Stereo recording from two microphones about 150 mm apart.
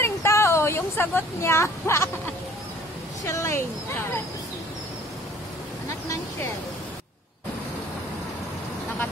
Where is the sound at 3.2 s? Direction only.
20° left (ahead or behind).